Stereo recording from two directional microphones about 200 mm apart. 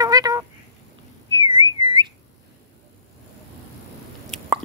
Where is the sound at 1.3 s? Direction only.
25° right (ahead or behind).